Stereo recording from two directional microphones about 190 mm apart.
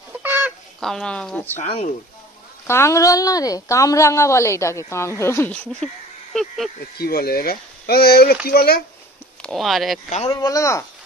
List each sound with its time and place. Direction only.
0.2 s chicken: 10° right (ahead or behind)
0.7 s speech: centre (ahead or behind)
1.7 s speech: 35° left (ahead or behind)
2.6 s speech: 15° left (ahead or behind)
6.3 s a sound: centre (ahead or behind)
7.0 s speech: 55° left (ahead or behind)
9.4 s speech: centre (ahead or behind)
10.0 s speech: 35° left (ahead or behind)
10.3 s speech: 15° left (ahead or behind)